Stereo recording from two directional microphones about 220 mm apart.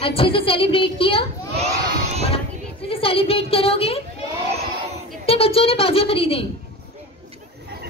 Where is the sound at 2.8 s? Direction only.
25° left (ahead or behind).